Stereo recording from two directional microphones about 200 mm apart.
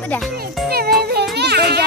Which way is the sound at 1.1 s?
55° right (ahead or behind).